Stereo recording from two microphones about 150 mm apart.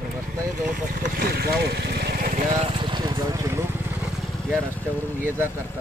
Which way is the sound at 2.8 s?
30° right (ahead or behind).